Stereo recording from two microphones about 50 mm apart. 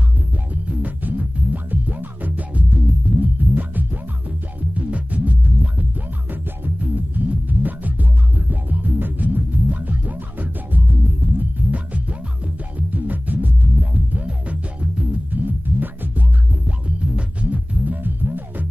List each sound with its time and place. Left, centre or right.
0.5 s music: right
15.4 s music: right
16.6 s music: right